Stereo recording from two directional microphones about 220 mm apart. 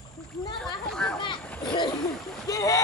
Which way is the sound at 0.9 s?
5° left (ahead or behind).